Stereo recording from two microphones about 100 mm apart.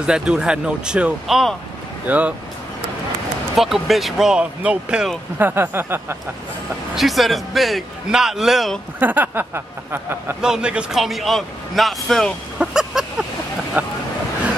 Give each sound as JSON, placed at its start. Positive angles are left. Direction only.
{"t": 0.0, "sound": "speech", "side_deg": -10}
{"t": 2.0, "sound": "speech", "side_deg": -15}
{"t": 3.5, "sound": "a man's voice", "side_deg": 0}
{"t": 5.4, "sound": "speech", "side_deg": -20}
{"t": 7.0, "sound": "a man's voice", "side_deg": 0}
{"t": 9.0, "sound": "speech", "side_deg": -20}
{"t": 10.4, "sound": "a man's voice", "side_deg": -10}
{"t": 12.5, "sound": "a sound", "side_deg": -5}
{"t": 13.8, "sound": "speech", "side_deg": -15}